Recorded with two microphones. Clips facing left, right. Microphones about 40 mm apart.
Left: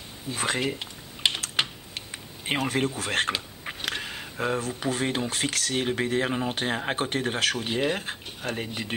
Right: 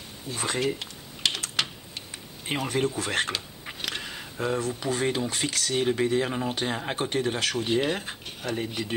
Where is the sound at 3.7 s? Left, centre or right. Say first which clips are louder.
Left 2 dB; left.